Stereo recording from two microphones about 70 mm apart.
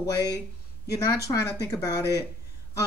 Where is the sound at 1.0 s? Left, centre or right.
Left.